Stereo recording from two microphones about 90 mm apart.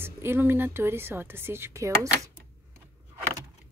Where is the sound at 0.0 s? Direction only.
25° right (ahead or behind).